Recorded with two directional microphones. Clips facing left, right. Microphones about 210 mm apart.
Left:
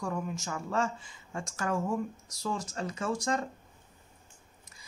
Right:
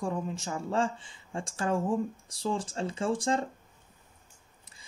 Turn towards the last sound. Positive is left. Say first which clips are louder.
# right 3 dB
turn(degrees=-30)  # may be behind; listen again after turning